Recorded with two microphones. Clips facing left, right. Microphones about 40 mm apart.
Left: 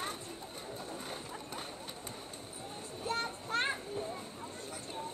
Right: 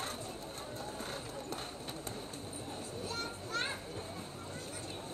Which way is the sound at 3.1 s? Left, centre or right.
Left.